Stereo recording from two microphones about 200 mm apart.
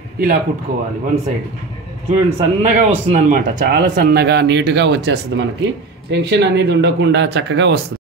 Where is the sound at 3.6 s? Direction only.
50° right (ahead or behind).